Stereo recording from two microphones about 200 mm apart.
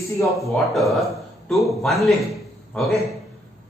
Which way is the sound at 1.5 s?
Centre (ahead or behind).